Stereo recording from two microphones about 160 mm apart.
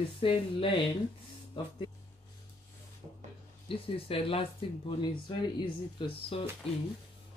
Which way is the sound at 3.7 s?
35° left (ahead or behind).